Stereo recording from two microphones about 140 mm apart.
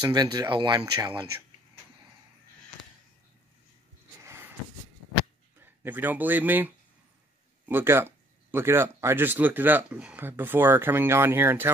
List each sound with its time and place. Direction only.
0.0 s speech: 30° right (ahead or behind)
4.2 s a sound: 20° right (ahead or behind)
5.6 s speech: 15° right (ahead or behind)